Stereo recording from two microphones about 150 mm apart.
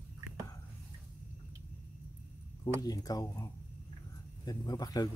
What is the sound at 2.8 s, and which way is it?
Speech, 25° left (ahead or behind).